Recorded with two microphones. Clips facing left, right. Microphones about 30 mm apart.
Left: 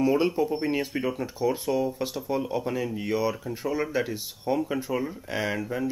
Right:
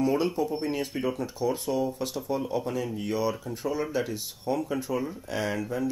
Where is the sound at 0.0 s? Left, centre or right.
Centre.